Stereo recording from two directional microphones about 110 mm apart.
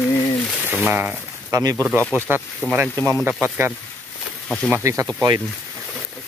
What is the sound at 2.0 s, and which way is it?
Speech, 20° left (ahead or behind).